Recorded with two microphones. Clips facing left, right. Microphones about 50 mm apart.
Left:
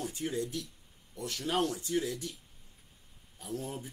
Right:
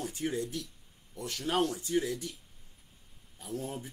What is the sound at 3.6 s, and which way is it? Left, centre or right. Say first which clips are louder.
Speech: right 1 dB; centre.